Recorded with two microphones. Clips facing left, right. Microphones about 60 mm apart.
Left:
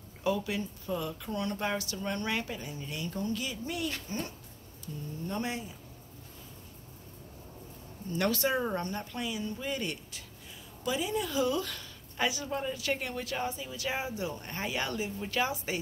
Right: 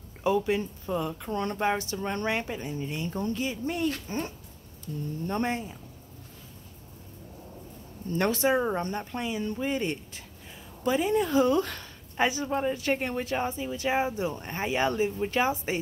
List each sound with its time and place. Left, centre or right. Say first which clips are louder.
0.2 s a woman's voice: right 6 dB; right
5.3 s speech: right 6 dB; right
8.1 s speech: right 4 dB; right
8.8 s a woman's voice: right 4 dB; right